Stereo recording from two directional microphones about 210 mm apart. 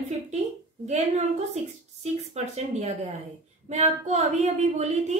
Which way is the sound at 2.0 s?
30° right (ahead or behind).